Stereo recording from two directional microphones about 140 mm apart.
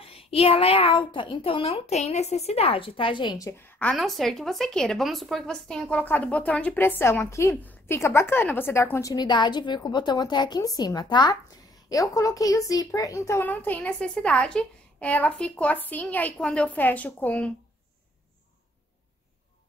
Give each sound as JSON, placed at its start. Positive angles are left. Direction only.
{"t": 0.0, "sound": "a child's voice", "side_deg": 45}
{"t": 3.8, "sound": "speech", "side_deg": 0}
{"t": 9.1, "sound": "a child's voice", "side_deg": 30}